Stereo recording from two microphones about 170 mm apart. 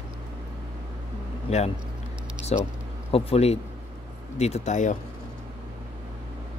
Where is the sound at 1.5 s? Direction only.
40° left (ahead or behind).